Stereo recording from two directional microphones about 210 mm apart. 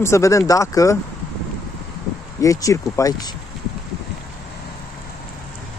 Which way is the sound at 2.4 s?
15° left (ahead or behind).